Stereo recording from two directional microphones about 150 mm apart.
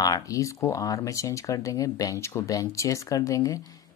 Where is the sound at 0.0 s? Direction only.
25° left (ahead or behind).